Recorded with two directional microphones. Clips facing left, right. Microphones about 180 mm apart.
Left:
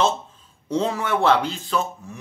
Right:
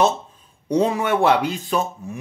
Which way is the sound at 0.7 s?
15° right (ahead or behind).